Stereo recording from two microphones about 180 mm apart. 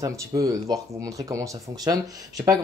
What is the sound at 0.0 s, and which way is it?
Speech, 20° right (ahead or behind).